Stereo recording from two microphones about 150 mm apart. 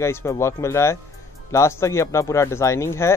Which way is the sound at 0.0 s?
15° left (ahead or behind).